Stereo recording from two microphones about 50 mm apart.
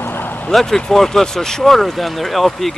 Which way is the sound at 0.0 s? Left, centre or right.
Left.